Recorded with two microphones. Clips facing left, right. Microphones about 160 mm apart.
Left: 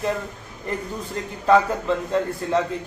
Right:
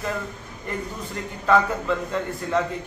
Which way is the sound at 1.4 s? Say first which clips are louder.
Left 2 dB; 30° left (ahead or behind).